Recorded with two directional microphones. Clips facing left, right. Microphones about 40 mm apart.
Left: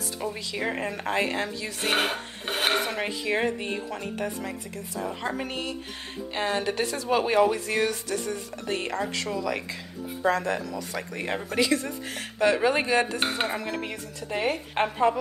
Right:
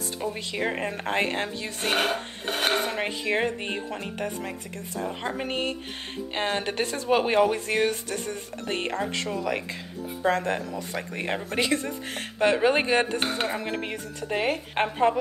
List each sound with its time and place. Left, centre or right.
0.3 s speech: right
2.0 s filing: centre
2.8 s speech: right
5.5 s speech: right